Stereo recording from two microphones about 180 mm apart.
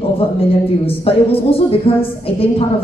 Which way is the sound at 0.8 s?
30° left (ahead or behind).